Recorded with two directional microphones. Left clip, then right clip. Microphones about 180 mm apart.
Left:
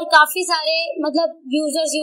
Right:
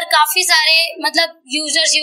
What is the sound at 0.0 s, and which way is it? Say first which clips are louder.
A woman's voice: even; 50° left (ahead or behind).